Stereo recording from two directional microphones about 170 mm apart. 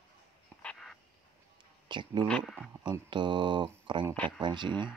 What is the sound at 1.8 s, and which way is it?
Speech, 30° right (ahead or behind).